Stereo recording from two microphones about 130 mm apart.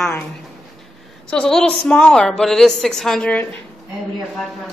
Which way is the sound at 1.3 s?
5° left (ahead or behind).